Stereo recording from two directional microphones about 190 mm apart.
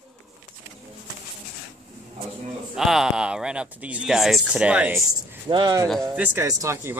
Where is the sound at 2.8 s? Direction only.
Centre (ahead or behind).